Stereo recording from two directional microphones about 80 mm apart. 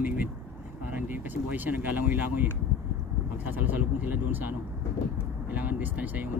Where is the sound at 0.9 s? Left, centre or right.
Right.